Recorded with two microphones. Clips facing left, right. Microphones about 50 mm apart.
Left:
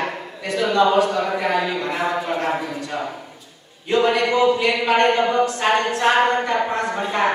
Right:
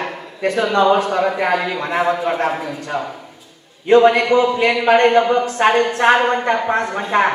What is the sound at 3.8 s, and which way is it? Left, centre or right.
A man's voice, right.